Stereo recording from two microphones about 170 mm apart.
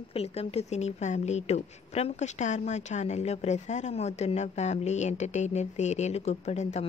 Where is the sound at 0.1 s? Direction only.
35° left (ahead or behind).